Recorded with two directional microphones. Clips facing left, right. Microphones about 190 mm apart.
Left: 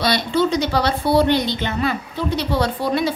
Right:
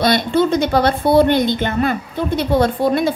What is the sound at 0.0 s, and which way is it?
A woman's voice, 50° right (ahead or behind).